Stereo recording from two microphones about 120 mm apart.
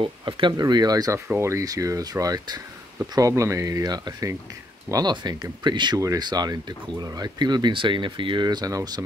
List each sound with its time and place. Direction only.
0.0 s speech: 40° right (ahead or behind)